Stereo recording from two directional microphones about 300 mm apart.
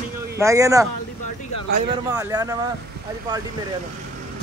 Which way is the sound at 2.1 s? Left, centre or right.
Centre.